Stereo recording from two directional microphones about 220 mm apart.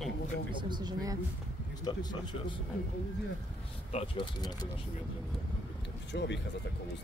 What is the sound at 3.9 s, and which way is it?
Speech, 20° left (ahead or behind).